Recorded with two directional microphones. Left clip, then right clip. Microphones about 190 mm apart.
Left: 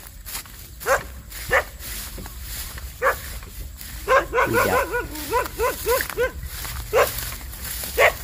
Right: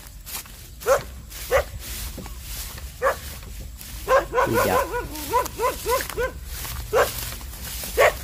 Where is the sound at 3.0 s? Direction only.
65° right (ahead or behind).